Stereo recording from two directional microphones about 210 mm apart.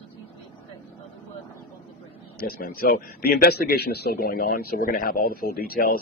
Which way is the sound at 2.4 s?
45° left (ahead or behind).